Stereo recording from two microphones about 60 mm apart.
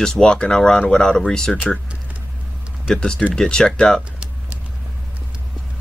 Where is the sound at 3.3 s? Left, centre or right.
Centre.